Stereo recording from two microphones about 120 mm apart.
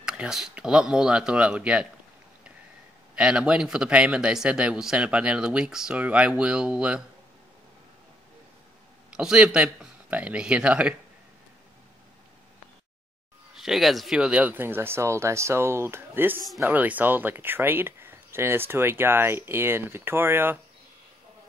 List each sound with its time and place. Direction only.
0.0 s speech: 5° right (ahead or behind)
3.2 s speech: 10° right (ahead or behind)
9.1 s speech: 5° right (ahead or behind)
13.6 s speech: centre (ahead or behind); by 20.5 s 20° right (ahead or behind)